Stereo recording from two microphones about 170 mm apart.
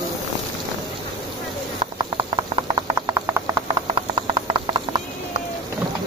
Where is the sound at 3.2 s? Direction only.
20° right (ahead or behind).